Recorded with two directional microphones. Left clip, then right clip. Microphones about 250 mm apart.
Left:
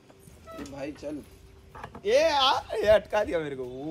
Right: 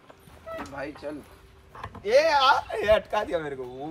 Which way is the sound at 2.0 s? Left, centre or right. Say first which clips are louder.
Right 2 dB; centre.